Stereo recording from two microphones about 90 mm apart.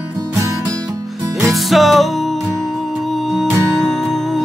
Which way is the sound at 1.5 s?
Centre (ahead or behind).